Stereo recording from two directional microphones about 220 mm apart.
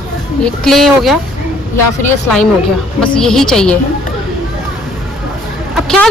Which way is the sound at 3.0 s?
5° left (ahead or behind).